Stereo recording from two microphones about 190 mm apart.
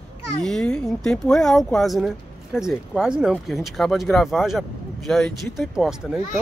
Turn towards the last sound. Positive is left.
turn(degrees=0)  # may be behind; listen again after turning